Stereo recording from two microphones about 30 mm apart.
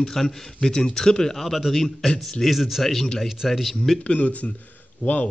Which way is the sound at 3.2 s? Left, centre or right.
Centre.